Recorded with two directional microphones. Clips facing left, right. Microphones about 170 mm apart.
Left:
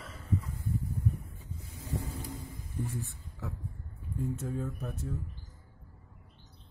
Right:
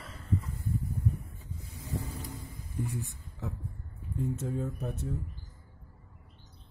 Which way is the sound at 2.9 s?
15° right (ahead or behind).